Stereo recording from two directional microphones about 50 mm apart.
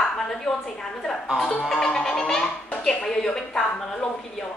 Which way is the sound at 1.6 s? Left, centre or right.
Centre.